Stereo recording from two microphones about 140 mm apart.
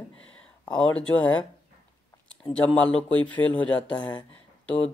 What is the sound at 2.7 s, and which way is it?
Speech, 10° left (ahead or behind).